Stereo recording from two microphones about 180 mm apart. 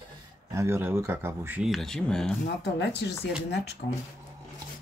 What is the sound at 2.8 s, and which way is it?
Speech, 70° left (ahead or behind).